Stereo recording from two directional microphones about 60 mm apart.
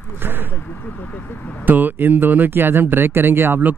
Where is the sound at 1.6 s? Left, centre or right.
Right.